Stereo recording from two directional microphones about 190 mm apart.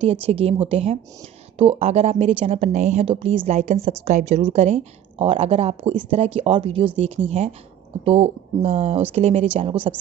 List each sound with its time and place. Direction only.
0.0 s a woman's voice: 30° right (ahead or behind)